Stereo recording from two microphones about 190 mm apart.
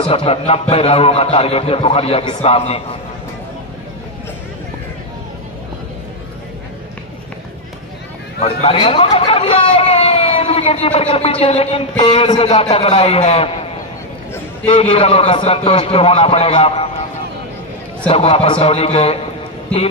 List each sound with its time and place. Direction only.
0.0 s a man's voice: 30° left (ahead or behind)
8.4 s a man's voice: 30° left (ahead or behind)
14.7 s a man's voice: 30° left (ahead or behind)
18.0 s a man's voice: 30° left (ahead or behind)